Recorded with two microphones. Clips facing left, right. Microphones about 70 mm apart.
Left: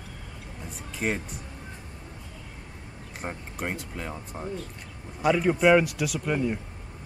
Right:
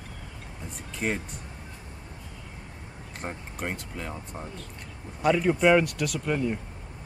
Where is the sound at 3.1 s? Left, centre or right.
Centre.